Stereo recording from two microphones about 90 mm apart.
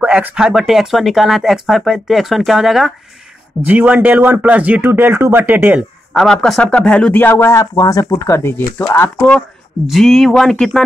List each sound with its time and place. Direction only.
0.0 s speech: 15° right (ahead or behind)
3.6 s speech: 15° right (ahead or behind)
6.1 s speech: 5° left (ahead or behind); by 7.6 s 30° left (ahead or behind)
7.7 s speech: 45° left (ahead or behind); by 8.8 s 25° left (ahead or behind)
9.8 s speech: centre (ahead or behind)